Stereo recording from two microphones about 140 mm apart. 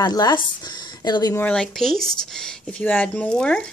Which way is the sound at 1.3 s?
10° left (ahead or behind).